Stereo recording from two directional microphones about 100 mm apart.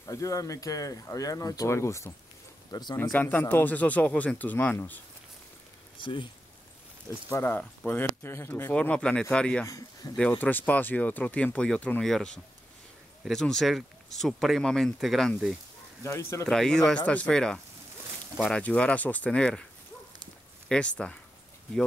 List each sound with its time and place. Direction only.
0.0 s speech: 35° left (ahead or behind)
2.7 s speech: 45° left (ahead or behind)
3.0 s speech: 15° left (ahead or behind)
5.9 s speech: 55° left (ahead or behind)
7.1 s speech: 25° left (ahead or behind); by 15.3 s centre (ahead or behind)
16.0 s speech: 25° left (ahead or behind)
16.4 s speech: 5° left (ahead or behind)
20.6 s speech: 10° left (ahead or behind)